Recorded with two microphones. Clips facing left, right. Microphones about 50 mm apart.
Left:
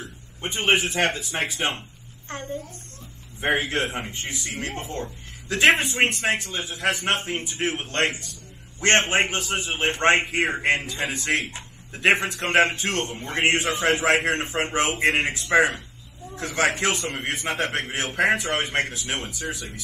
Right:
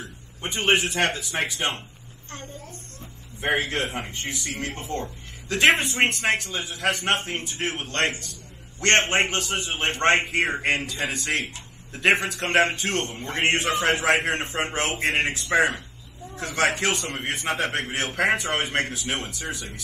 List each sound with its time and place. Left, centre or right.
0.0 s speech: centre
2.2 s a child's voice: left
3.3 s a man's voice: centre
6.3 s a man's voice: centre
10.4 s a man's voice: centre
11.3 s a man's voice: left
12.9 s a man's voice: centre
14.2 s a man's voice: centre
16.4 s a man's voice: centre
17.7 s a man's voice: centre
19.0 s a man's voice: centre